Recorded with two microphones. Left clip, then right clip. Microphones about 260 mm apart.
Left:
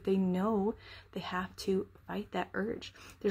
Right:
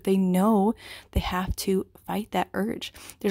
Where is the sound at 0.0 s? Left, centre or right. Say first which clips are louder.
Right 8 dB; right.